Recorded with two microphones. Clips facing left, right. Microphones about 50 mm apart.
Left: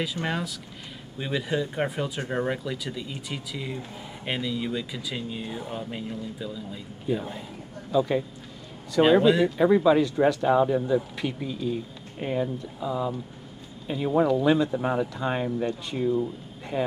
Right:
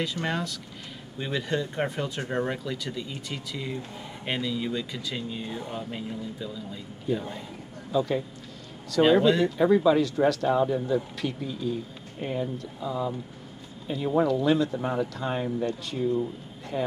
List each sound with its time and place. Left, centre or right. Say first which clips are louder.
0.0 s speech: even; centre
10.8 s speech: left 2 dB; centre
11.1 s speech: left 1 dB; centre